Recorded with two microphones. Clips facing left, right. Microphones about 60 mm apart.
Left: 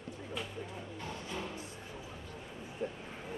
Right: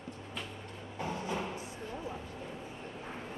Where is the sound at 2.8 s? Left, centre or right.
Centre.